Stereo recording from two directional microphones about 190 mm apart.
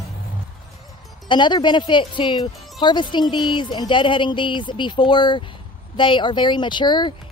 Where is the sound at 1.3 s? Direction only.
25° left (ahead or behind).